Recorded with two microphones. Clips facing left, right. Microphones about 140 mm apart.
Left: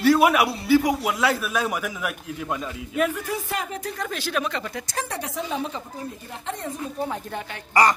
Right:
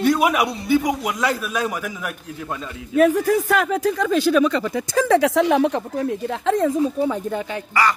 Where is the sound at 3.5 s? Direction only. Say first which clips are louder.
Right 10 dB; 90° right.